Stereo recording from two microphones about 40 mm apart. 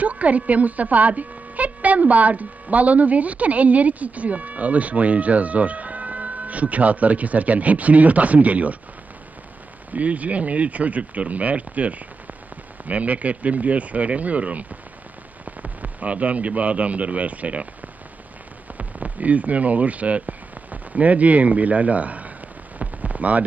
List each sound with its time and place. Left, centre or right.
0.0 s a woman's voice: right
9.9 s a woman's voice: right
18.8 s speech: right
22.8 s rain on surface: right